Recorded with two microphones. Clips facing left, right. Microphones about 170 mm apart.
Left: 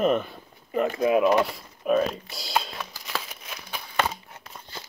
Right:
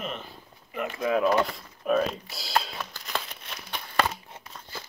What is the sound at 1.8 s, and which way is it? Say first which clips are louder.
Crumpling: left 2 dB; centre (ahead or behind).